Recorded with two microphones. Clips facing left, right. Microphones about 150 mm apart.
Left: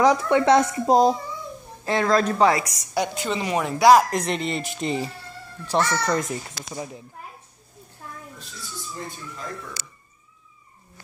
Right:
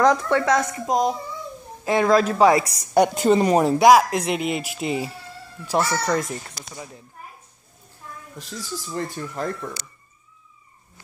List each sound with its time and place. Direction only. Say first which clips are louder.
0.3 s a woman's voice: left 3 dB; 25° left (ahead or behind)
1.9 s speech: right 3 dB; 10° right (ahead or behind)
2.5 s a woman's voice: right 5 dB; 30° right (ahead or behind)
2.9 s a woman's voice: right 9 dB; 45° right (ahead or behind)
3.9 s speech: right 1 dB; centre (ahead or behind)
6.6 s a woman's voice: left 5 dB; 25° left (ahead or behind)
8.4 s speech: right 7 dB; 90° right; by 9.5 s 65° right (ahead or behind)